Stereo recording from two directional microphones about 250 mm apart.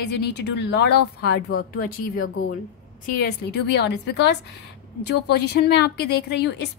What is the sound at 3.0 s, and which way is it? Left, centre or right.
A woman's voice, left.